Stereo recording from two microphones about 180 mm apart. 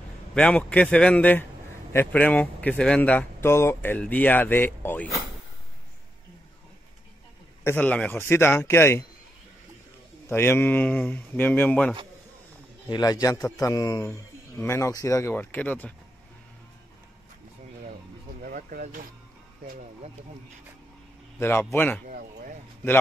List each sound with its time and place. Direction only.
0.3 s speech: 5° left (ahead or behind)
7.6 s speech: 10° left (ahead or behind)
10.2 s speech: 15° left (ahead or behind)
12.8 s a man's voice: 20° left (ahead or behind)
18.4 s vehicle: 55° right (ahead or behind)
21.4 s speech: 15° left (ahead or behind)
22.0 s a sound: 50° right (ahead or behind)